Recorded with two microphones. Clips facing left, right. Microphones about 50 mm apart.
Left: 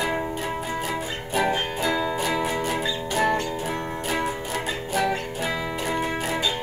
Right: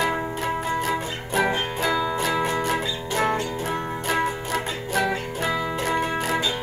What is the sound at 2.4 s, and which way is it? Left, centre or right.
Music, centre.